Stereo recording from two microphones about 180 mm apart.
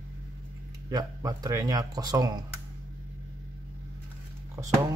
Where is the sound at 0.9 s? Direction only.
20° right (ahead or behind).